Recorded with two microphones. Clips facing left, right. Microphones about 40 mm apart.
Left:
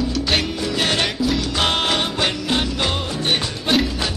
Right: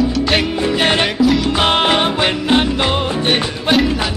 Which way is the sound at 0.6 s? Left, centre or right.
Right.